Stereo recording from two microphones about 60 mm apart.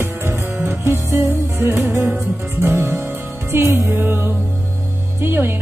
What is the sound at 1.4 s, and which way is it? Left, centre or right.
Music, right.